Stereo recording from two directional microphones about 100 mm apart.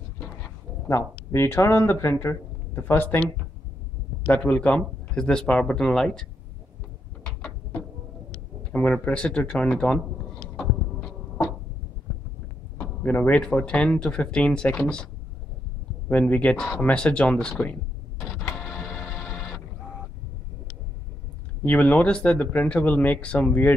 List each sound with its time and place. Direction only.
0.8 s speech: 25° left (ahead or behind)
4.3 s speech: 15° left (ahead or behind)
8.7 s speech: 10° left (ahead or behind)
10.5 s heart murmur: 15° left (ahead or behind)
12.7 s speech: 15° left (ahead or behind)
16.1 s speech: 15° left (ahead or behind)
18.3 s printer: 5° left (ahead or behind)
21.6 s speech: 15° left (ahead or behind)